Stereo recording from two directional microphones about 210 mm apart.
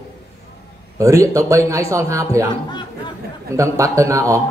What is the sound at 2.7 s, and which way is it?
Speech, 20° left (ahead or behind).